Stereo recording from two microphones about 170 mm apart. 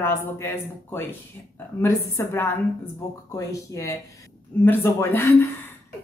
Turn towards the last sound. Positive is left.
turn(degrees=15)  # may be behind; listen again after turning